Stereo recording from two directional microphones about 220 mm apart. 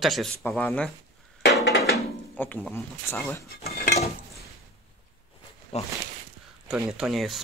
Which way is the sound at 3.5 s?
45° left (ahead or behind).